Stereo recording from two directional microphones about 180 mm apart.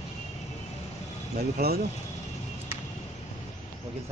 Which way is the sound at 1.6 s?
60° right (ahead or behind).